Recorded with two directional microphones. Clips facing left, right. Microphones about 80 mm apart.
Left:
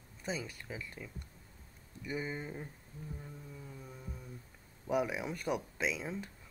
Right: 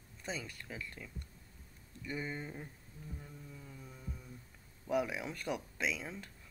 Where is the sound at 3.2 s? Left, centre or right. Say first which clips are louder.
Left 3 dB; centre.